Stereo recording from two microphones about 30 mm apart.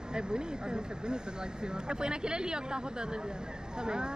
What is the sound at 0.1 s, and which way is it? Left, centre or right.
Speech, right.